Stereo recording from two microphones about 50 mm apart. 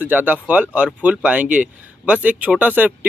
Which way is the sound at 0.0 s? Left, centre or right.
Right.